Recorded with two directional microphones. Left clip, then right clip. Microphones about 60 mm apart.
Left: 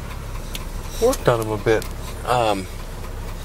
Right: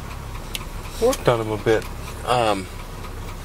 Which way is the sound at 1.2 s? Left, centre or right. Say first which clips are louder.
Left 1 dB; centre.